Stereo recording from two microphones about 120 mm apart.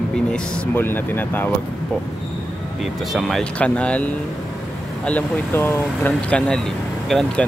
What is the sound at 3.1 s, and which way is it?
Speech, centre (ahead or behind).